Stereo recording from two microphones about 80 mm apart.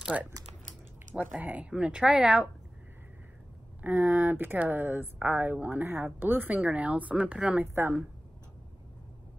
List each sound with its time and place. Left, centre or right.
0.0 s speech: centre
1.4 s speech: centre
3.8 s speech: right
7.6 s speech: right